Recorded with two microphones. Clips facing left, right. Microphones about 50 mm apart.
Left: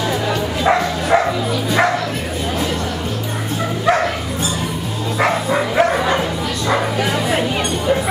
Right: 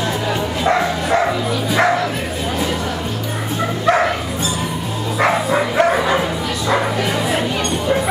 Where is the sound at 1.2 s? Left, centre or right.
Centre.